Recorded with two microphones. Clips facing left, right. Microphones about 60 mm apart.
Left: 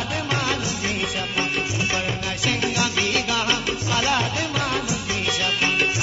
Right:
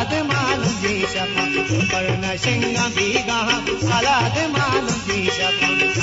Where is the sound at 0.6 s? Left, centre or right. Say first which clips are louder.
Right 5 dB; right.